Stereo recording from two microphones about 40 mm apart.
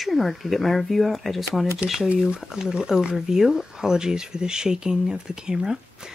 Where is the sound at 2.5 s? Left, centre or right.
Centre.